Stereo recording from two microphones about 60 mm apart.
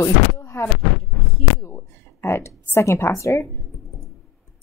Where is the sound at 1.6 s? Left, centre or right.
Left.